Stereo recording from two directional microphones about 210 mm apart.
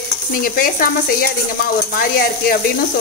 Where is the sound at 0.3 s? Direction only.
40° left (ahead or behind).